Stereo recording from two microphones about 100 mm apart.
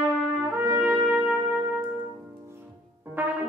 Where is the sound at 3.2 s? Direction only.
20° right (ahead or behind).